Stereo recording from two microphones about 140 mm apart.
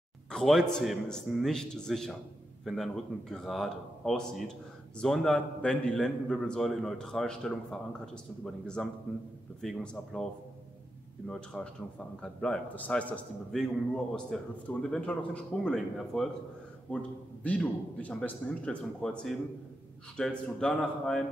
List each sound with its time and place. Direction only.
0.3 s a man's voice: 5° left (ahead or behind)
11.2 s a man's voice: 5° left (ahead or behind)